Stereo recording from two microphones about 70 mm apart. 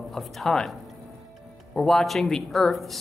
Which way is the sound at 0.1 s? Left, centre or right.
Centre.